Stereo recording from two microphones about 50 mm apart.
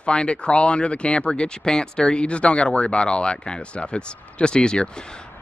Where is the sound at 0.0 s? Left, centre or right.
Left.